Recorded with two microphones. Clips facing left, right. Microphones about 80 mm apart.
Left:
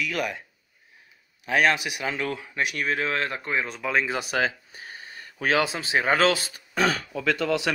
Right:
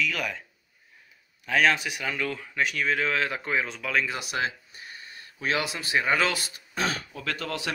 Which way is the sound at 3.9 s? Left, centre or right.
Left.